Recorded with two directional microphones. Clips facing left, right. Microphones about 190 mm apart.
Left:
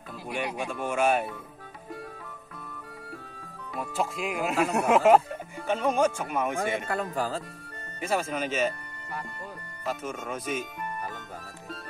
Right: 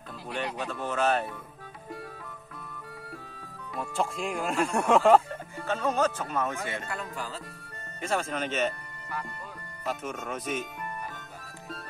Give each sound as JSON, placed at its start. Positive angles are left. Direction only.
{"t": 0.3, "sound": "speech", "side_deg": 10}
{"t": 3.7, "sound": "speech", "side_deg": 0}
{"t": 6.9, "sound": "speech", "side_deg": 40}
{"t": 8.0, "sound": "speech", "side_deg": 5}
{"t": 9.8, "sound": "speech", "side_deg": 0}